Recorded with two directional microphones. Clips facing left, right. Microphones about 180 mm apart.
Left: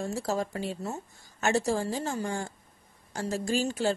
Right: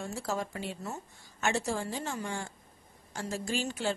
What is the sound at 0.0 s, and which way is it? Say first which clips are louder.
Speech: left 4 dB; 35° left (ahead or behind).